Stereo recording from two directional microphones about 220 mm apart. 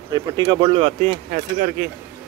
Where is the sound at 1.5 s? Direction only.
40° right (ahead or behind).